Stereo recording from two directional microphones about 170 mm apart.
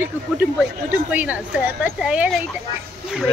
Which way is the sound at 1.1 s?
10° right (ahead or behind).